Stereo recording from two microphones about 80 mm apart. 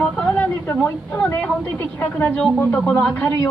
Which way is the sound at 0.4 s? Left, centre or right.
Left.